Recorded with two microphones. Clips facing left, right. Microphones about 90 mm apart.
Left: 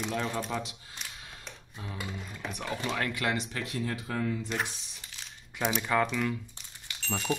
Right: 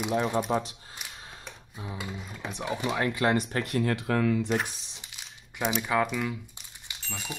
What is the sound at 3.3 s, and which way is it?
Speech, 50° right (ahead or behind).